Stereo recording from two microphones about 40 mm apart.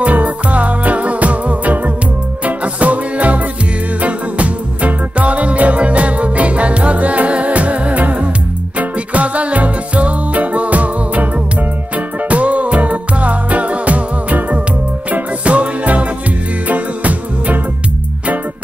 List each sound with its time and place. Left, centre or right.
0.0 s music: right
12.3 s music: right